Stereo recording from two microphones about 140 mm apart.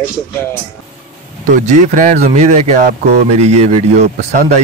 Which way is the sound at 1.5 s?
65° right (ahead or behind).